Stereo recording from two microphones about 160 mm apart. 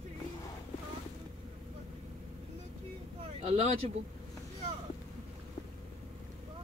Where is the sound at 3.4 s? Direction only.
45° right (ahead or behind).